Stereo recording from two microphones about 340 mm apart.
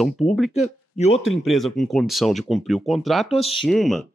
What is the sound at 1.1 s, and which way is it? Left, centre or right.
Speech, left.